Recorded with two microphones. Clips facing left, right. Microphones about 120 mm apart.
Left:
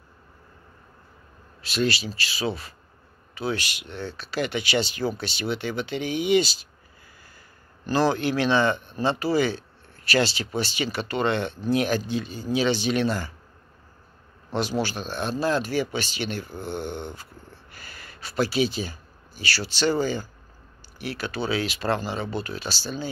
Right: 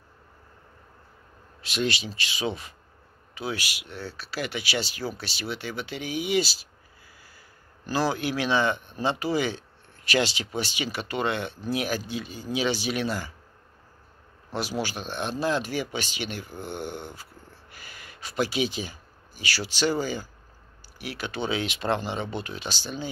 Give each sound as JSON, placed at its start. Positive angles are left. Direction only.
{"t": 1.6, "sound": "speech", "side_deg": -20}
{"t": 7.8, "sound": "speech", "side_deg": -10}
{"t": 14.5, "sound": "speech", "side_deg": -10}